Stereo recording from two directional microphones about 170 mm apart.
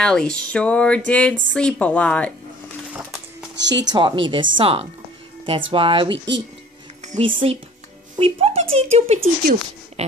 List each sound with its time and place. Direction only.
0.0 s speech: 5° left (ahead or behind)
2.9 s a sound: centre (ahead or behind)
3.5 s speech: 90° right
3.9 s speech: 25° right (ahead or behind)
6.1 s speech: 90° right
7.1 s speech: 35° right (ahead or behind)